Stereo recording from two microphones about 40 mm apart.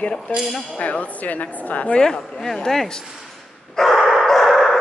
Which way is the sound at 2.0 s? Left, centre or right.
Left.